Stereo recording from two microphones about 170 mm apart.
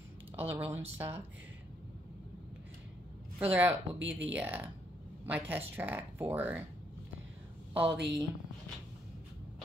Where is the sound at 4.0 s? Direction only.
90° right.